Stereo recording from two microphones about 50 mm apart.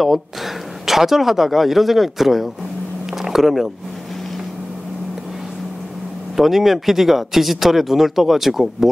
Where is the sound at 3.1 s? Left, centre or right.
Centre.